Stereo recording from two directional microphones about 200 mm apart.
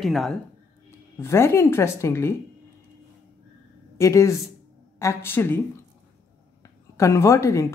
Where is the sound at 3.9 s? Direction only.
15° left (ahead or behind).